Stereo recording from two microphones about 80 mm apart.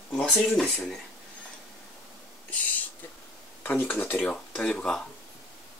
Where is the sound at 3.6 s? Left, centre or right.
Left.